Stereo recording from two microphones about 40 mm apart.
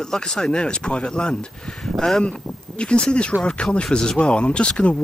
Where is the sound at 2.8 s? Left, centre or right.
Left.